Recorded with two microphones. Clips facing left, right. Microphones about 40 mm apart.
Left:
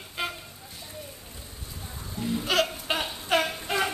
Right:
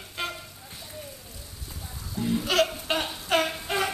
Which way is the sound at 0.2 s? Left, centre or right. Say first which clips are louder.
Left 1 dB; centre.